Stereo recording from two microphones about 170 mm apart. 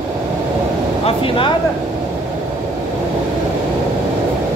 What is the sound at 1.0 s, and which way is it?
Speech, 30° left (ahead or behind).